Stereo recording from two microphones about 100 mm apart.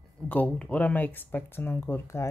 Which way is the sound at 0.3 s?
15° left (ahead or behind).